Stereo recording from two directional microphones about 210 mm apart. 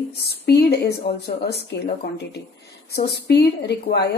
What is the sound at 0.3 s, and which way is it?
Speech, 50° left (ahead or behind).